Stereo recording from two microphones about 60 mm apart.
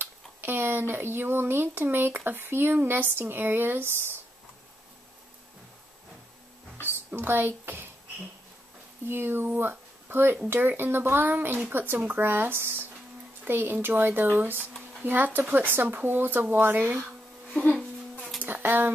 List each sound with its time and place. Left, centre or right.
0.0 s speech: right
7.1 s speech: right
9.0 s speech: right
17.5 s speech: left
18.4 s a sound: right